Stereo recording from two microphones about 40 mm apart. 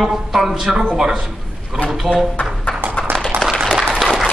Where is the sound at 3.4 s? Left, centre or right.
Centre.